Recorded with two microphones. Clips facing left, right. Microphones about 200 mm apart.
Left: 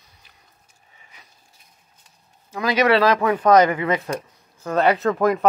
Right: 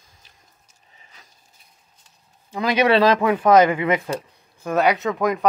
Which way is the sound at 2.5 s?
15° right (ahead or behind).